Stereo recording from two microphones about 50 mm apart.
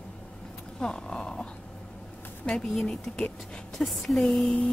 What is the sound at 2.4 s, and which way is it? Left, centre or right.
Speech, centre.